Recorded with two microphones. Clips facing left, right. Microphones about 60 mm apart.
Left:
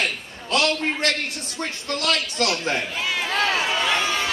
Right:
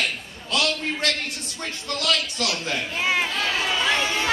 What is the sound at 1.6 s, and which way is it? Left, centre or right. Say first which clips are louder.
Speech: left 3 dB; left.